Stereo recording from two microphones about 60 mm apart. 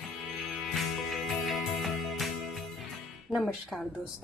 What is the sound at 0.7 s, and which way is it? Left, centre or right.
Music, centre.